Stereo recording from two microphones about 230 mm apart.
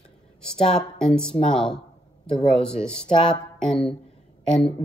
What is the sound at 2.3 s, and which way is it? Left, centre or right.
Speech, left.